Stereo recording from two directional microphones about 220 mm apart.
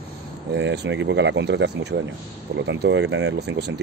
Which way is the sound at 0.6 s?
55° right (ahead or behind).